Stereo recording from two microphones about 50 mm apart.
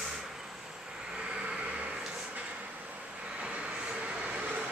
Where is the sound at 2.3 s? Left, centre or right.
Right.